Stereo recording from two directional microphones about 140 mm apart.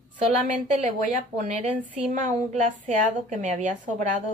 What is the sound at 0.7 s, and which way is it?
A woman's voice, 55° right (ahead or behind).